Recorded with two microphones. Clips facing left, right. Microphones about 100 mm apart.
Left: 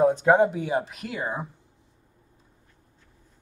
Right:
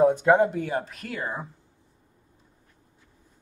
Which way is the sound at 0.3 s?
5° left (ahead or behind).